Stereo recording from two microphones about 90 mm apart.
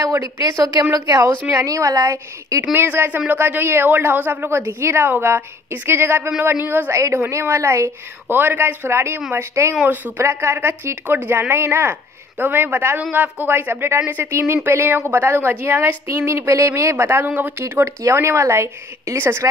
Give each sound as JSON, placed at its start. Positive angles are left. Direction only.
{"t": 0.0, "sound": "a woman's voice", "side_deg": -40}
{"t": 2.7, "sound": "a woman's voice", "side_deg": -25}
{"t": 9.8, "sound": "a woman's voice", "side_deg": -15}
{"t": 10.2, "sound": "speech", "side_deg": -25}